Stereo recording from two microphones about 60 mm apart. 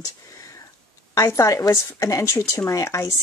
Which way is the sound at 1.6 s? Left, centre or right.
Left.